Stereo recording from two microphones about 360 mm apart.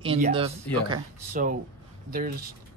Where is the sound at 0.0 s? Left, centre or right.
Centre.